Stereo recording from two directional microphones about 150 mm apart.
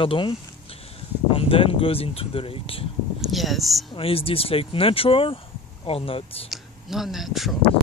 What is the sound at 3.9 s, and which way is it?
Speech, 40° left (ahead or behind).